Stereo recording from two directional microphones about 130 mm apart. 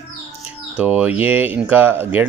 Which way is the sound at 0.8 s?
10° right (ahead or behind).